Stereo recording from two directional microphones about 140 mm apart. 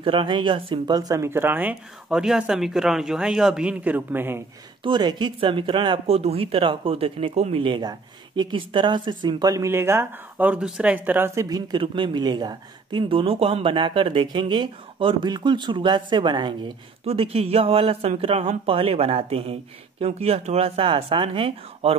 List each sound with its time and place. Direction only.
0.0 s speech: 40° right (ahead or behind); by 4.4 s 15° right (ahead or behind)
4.8 s speech: 35° right (ahead or behind)